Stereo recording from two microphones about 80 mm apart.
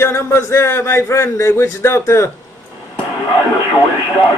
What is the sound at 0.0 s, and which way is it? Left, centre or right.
Speech, left.